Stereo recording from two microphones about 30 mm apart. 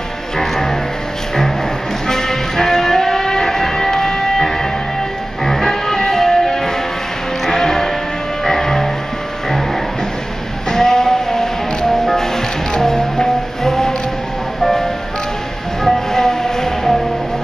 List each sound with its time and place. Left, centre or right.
0.4 s music: centre
2.0 s music: centre
10.7 s music: centre